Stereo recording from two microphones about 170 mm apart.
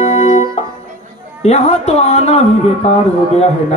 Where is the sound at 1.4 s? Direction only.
40° left (ahead or behind).